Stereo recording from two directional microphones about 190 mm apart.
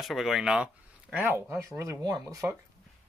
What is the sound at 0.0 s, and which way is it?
Speech, centre (ahead or behind).